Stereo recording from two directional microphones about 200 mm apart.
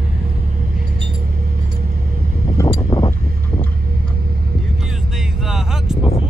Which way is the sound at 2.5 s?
15° left (ahead or behind).